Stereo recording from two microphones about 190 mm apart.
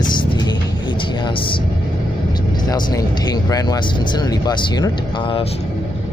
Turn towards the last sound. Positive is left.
turn(degrees=20)  # may be behind; listen again after turning